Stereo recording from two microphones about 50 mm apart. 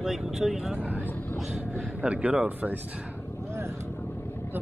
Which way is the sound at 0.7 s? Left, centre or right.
Right.